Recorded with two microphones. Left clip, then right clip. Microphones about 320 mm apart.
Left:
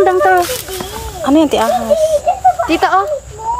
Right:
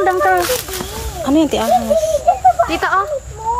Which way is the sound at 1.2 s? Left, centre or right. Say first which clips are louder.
Left 4 dB; centre.